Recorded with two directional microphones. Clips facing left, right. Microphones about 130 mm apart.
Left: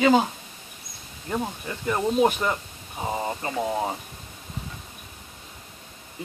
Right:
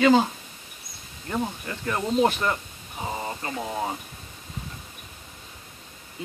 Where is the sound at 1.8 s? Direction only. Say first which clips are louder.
Left 1 dB; 15° left (ahead or behind).